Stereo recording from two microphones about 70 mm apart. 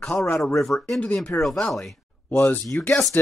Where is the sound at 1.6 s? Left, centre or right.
Centre.